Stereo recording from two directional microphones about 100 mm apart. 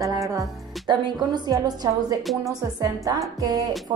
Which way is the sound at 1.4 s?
40° right (ahead or behind).